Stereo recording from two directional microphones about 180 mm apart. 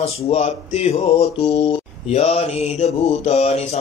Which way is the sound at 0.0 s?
35° left (ahead or behind).